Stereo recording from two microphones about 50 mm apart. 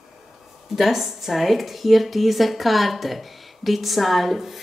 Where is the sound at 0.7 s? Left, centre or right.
Centre.